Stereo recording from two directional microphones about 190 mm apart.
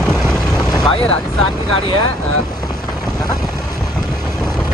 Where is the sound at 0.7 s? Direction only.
25° left (ahead or behind).